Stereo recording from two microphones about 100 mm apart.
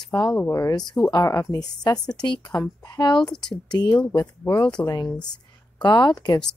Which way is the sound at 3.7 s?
45° left (ahead or behind).